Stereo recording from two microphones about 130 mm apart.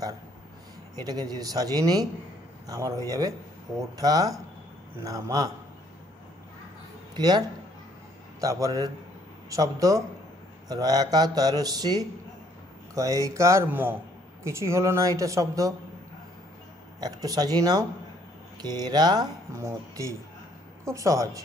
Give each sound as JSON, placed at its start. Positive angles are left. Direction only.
{"t": 1.0, "sound": "a man's voice", "side_deg": -30}
{"t": 7.2, "sound": "a man's voice", "side_deg": -30}
{"t": 17.0, "sound": "a man's voice", "side_deg": -30}